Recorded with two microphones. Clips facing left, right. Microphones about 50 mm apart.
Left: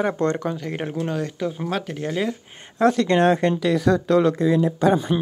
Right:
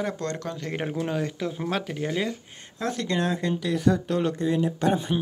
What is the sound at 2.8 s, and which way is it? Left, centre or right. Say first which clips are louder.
Speech: left 10 dB; left.